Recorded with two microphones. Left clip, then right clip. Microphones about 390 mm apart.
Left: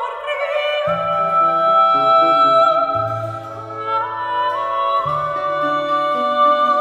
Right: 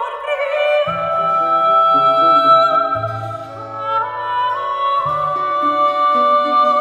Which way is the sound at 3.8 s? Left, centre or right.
Centre.